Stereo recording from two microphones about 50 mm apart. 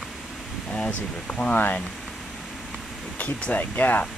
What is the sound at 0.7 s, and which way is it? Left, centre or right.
Speech, left.